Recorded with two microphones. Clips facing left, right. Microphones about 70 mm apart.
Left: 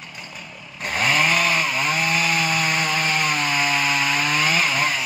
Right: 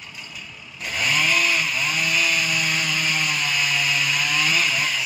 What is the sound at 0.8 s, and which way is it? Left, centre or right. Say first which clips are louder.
Chainsaw: left 3 dB; left.